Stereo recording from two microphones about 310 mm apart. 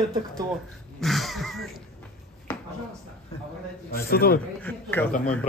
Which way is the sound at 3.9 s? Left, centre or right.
Left.